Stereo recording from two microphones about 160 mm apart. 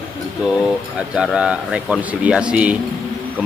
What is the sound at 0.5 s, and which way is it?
A man's voice, 5° right (ahead or behind).